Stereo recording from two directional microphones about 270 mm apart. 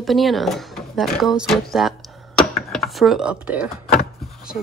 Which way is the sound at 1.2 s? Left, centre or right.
Centre.